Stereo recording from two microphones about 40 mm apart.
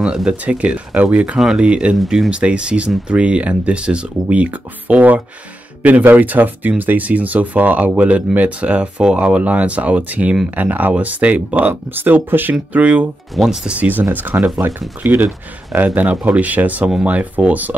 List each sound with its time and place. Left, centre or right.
0.3 s speech: right
2.0 s speech: centre
2.3 s speech: right
10.5 s speech: right
11.7 s speech: right
12.7 s speech: right
13.4 s speech: centre
13.7 s speech: right
15.0 s speech: right